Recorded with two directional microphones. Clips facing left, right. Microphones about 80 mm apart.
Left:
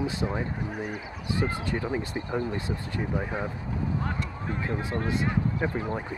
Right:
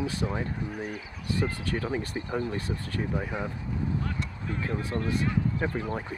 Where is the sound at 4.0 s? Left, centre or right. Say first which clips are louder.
Left 2 dB; left.